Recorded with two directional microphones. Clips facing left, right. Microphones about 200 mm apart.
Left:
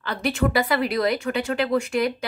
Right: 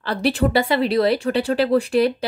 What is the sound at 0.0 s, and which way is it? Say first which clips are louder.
A woman's voice: right 4 dB; 35° right (ahead or behind).